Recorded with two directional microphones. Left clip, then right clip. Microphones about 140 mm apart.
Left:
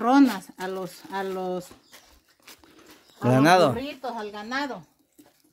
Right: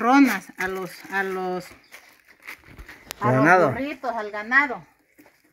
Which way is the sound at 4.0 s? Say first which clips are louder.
Right 5 dB; 45° right (ahead or behind).